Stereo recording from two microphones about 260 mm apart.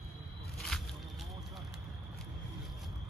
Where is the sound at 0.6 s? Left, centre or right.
Centre.